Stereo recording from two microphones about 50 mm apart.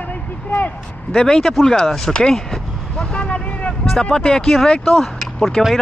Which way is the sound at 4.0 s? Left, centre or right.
Centre.